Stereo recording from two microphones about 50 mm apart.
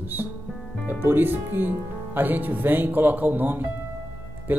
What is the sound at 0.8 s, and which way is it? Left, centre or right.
Speech, right.